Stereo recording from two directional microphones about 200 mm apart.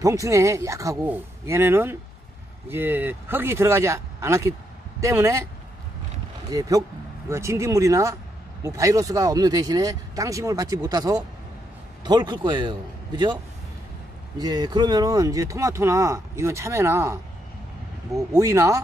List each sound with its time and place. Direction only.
0.0 s speech: 15° right (ahead or behind)
6.5 s a man's voice: 20° right (ahead or behind)
14.4 s speech: 20° right (ahead or behind)